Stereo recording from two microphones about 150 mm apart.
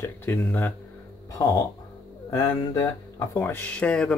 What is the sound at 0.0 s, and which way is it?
Speech, 15° left (ahead or behind).